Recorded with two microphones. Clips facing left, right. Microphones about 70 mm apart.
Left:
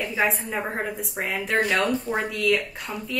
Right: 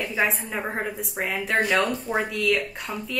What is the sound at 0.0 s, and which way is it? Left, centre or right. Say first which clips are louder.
A woman's voice: left 1 dB; centre.